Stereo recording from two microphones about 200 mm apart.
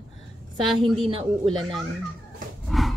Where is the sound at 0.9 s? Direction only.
30° right (ahead or behind).